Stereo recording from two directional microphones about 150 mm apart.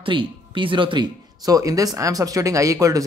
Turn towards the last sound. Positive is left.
turn(degrees=-20)  # may be behind; listen again after turning